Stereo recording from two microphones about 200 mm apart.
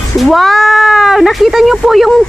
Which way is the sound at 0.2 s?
Centre (ahead or behind).